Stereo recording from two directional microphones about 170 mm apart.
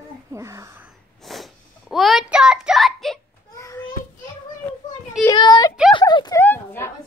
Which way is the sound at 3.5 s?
20° left (ahead or behind).